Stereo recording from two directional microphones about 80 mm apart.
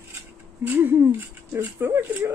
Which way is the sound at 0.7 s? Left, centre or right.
Right.